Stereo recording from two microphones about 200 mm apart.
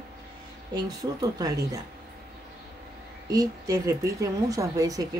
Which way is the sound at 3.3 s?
15° right (ahead or behind).